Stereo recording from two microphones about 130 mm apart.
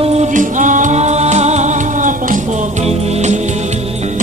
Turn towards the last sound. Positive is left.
turn(degrees=-60)  # may be behind; listen again after turning